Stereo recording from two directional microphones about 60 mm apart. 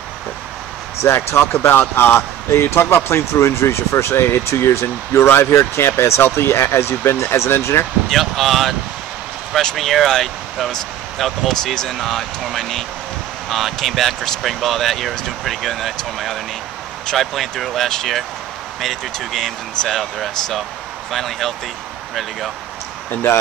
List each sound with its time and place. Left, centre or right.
1.0 s speech: left
8.1 s speech: centre